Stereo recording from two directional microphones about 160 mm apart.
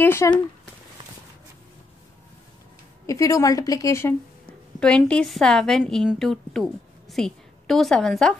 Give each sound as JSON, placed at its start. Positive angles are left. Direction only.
{"t": 0.0, "sound": "a sound", "side_deg": 15}
{"t": 3.1, "sound": "a woman's voice", "side_deg": 20}
{"t": 4.7, "sound": "a woman's voice", "side_deg": 5}